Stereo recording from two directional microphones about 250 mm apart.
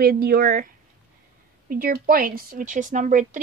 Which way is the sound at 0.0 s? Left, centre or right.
Right.